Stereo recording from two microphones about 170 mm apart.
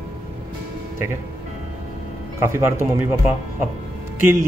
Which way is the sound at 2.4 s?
15° right (ahead or behind).